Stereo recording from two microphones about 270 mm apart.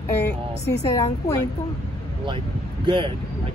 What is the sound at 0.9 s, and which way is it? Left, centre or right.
Speech, centre.